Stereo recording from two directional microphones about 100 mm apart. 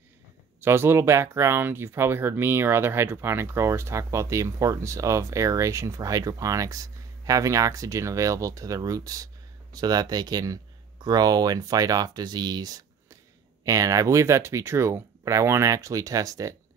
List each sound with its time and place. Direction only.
0.6 s speech: 25° right (ahead or behind)